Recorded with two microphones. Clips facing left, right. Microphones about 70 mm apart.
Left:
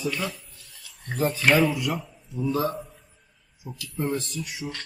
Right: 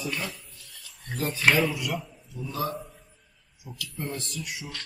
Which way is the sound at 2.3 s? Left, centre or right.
Left.